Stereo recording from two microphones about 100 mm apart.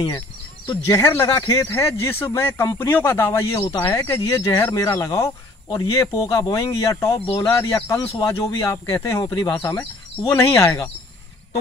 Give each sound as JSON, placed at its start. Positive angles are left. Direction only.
{"t": 0.7, "sound": "speech", "side_deg": 40}
{"t": 9.7, "sound": "speech", "side_deg": 30}